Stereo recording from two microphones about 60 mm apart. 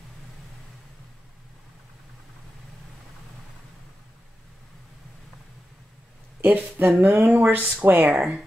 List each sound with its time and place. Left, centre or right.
6.4 s speech: right
7.3 s speech: right
8.1 s speech: centre